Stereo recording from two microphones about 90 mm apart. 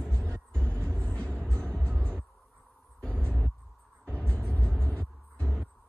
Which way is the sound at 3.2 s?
20° left (ahead or behind).